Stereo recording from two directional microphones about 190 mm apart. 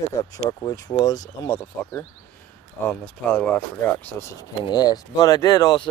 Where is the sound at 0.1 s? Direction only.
20° left (ahead or behind).